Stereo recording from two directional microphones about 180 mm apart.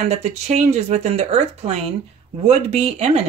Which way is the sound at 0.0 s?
35° right (ahead or behind).